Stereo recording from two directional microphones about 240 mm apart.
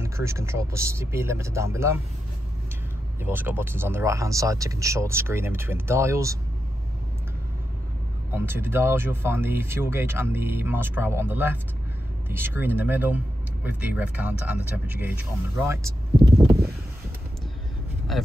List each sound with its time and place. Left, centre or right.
0.0 s speech: centre
3.2 s speech: centre
8.3 s speech: centre
16.3 s a sound: centre